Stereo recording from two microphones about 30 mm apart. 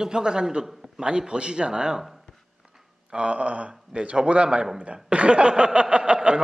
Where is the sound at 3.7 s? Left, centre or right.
Right.